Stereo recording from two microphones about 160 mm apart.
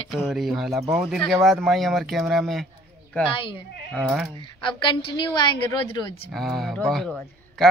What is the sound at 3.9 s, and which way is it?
Speech, centre (ahead or behind).